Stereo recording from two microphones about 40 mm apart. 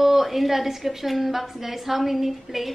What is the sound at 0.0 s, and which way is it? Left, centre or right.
A woman's voice, centre.